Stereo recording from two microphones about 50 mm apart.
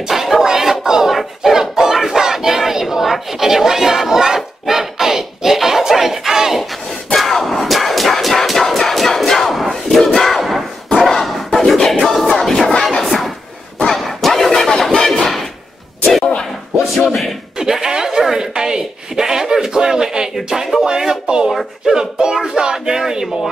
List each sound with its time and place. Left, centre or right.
0.1 s music: centre
1.1 s battle cry: centre
7.2 s music: centre
9.8 s crowd: centre
11.0 s battle cry: centre
12.6 s music: centre
13.0 s a sound: centre
16.8 s a sound: centre
17.6 s a sound: centre